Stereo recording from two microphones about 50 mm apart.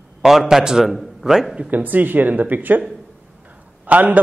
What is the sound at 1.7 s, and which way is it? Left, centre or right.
A man's voice, right.